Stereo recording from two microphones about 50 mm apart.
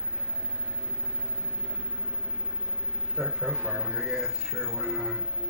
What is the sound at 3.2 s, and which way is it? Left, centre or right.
Speech, centre.